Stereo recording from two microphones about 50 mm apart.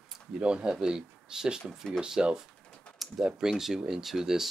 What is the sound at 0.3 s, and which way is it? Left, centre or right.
Speech, centre.